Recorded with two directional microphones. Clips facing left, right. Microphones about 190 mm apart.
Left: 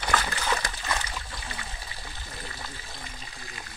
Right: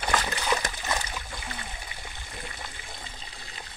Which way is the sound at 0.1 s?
20° right (ahead or behind).